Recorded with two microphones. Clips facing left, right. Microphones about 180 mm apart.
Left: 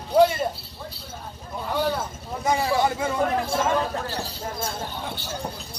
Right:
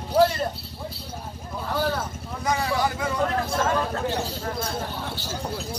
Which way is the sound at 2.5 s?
25° left (ahead or behind).